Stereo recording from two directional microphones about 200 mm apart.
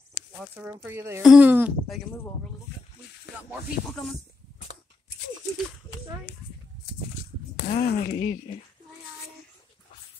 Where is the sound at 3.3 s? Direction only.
60° left (ahead or behind).